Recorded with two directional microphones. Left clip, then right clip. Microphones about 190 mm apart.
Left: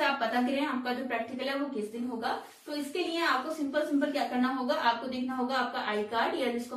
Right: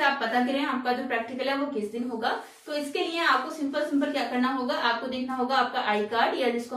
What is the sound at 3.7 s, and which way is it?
A woman's voice, centre (ahead or behind).